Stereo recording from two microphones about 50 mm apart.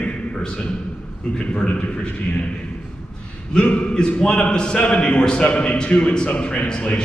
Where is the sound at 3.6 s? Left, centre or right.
Left.